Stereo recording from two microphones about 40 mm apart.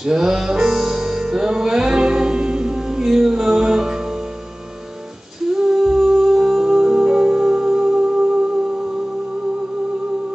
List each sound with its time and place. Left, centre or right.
0.0 s music: centre
5.5 s music: centre